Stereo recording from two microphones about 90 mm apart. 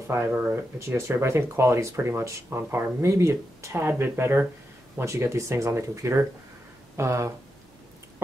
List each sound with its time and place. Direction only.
0.1 s speech: 25° right (ahead or behind)